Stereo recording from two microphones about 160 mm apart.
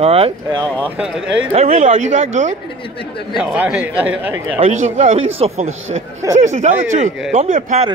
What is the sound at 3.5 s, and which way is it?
Speech, 10° right (ahead or behind).